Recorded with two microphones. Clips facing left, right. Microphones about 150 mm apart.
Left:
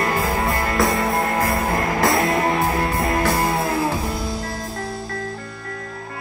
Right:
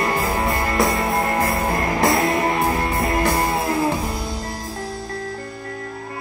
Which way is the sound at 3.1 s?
20° right (ahead or behind).